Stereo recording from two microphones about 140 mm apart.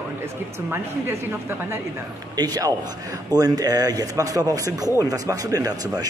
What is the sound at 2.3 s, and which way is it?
A man's voice, 30° right (ahead or behind).